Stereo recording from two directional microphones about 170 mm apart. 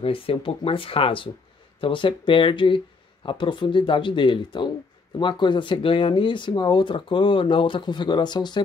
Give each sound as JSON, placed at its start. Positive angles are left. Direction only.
{"t": 0.0, "sound": "speech", "side_deg": 30}